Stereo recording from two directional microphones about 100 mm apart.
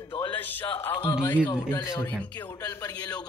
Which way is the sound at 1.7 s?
25° left (ahead or behind).